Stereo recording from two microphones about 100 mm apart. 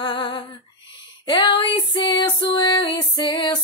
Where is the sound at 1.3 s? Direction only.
55° left (ahead or behind).